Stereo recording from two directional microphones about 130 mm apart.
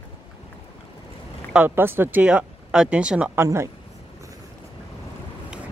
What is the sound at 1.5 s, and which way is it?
Speech, 15° right (ahead or behind).